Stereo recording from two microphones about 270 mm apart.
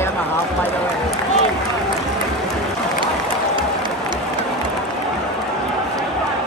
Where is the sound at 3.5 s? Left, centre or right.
Centre.